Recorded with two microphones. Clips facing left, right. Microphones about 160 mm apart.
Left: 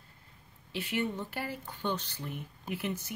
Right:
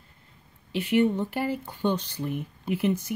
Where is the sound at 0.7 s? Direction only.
15° right (ahead or behind).